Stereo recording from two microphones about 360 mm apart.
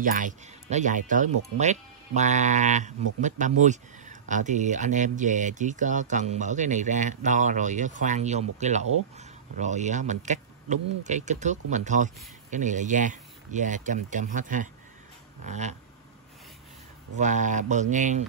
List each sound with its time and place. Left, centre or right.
0.0 s speech: right
17.2 s speech: centre